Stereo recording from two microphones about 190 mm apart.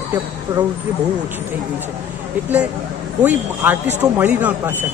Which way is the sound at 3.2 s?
10° right (ahead or behind).